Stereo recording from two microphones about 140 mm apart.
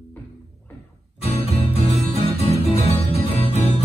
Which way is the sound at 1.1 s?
45° left (ahead or behind).